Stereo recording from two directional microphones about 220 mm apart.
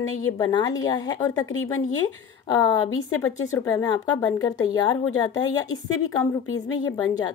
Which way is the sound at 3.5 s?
15° left (ahead or behind).